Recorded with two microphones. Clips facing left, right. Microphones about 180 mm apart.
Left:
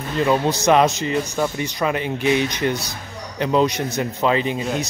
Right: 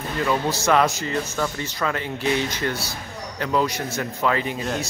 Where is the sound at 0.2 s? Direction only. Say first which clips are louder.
Left 5 dB; 20° left (ahead or behind).